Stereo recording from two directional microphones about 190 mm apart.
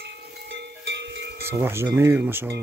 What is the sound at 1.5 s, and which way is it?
Speech, 15° right (ahead or behind).